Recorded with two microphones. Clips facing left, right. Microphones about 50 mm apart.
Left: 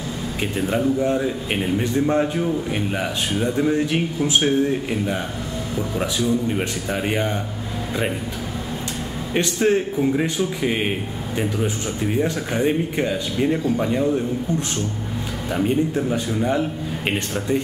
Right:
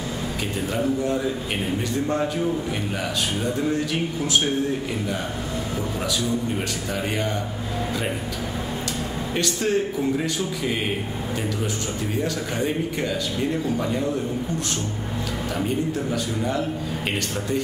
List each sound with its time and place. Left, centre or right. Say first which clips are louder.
1.0 s speech: left 3 dB; left
5.9 s speech: left 5 dB; left
9.3 s speech: left 5 dB; left
12.2 s speech: left 4 dB; left